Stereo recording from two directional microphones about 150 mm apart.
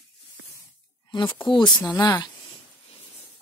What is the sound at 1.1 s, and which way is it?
Speech, 30° left (ahead or behind).